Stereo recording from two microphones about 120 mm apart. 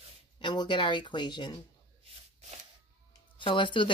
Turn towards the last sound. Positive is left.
turn(degrees=40)  # may be behind; listen again after turning